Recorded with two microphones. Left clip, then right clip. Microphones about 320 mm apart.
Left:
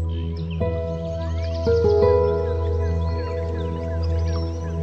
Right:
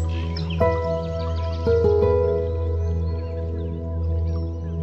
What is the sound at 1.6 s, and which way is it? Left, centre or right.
Music, centre.